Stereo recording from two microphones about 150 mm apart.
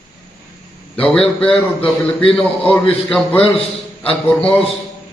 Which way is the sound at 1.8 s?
40° left (ahead or behind).